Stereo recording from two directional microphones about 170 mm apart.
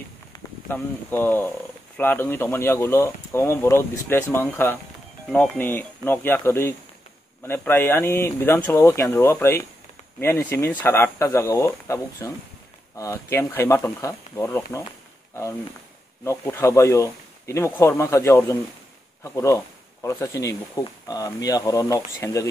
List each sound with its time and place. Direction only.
0.7 s speech: 15° left (ahead or behind)
16.3 s speech: 15° left (ahead or behind)